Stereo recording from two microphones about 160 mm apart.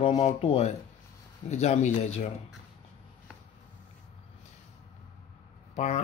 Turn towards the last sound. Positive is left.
turn(degrees=45)  # may be behind; listen again after turning